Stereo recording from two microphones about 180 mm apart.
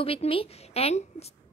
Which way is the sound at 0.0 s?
30° left (ahead or behind).